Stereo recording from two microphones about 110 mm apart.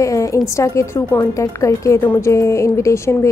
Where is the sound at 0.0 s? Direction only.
30° left (ahead or behind).